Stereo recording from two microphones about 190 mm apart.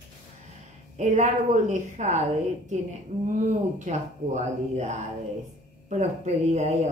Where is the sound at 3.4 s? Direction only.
40° right (ahead or behind).